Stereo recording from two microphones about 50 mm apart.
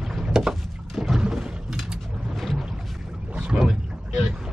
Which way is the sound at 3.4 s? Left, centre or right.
Centre.